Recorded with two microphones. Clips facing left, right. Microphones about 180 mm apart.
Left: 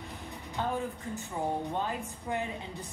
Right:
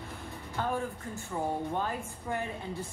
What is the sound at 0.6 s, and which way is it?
Music, 20° left (ahead or behind).